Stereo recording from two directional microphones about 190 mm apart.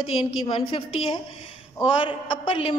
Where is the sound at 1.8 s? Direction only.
25° left (ahead or behind).